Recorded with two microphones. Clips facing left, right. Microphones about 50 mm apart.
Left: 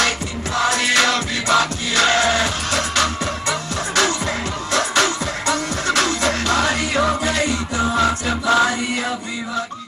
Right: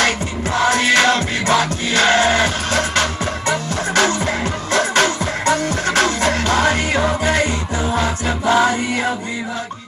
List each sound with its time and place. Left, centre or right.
0.0 s music: right
8.5 s music: right